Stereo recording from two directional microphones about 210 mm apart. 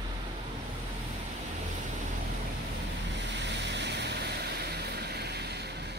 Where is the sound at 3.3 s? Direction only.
55° right (ahead or behind).